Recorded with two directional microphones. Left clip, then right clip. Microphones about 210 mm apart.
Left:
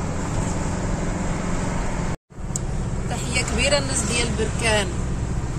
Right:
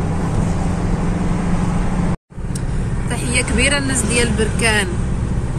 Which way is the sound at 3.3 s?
5° left (ahead or behind).